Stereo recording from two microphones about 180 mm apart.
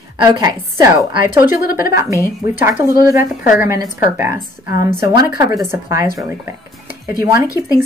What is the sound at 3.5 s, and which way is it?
Speech, 15° right (ahead or behind).